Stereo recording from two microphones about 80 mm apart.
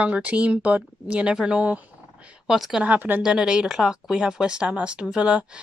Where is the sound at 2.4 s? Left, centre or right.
Centre.